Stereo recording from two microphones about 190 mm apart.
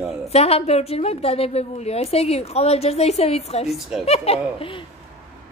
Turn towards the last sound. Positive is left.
turn(degrees=30)  # may be behind; listen again after turning